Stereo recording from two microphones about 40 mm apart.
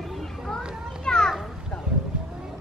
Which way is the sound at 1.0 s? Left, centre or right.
Centre.